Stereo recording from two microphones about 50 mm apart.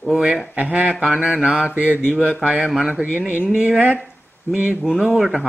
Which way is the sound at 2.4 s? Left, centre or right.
Centre.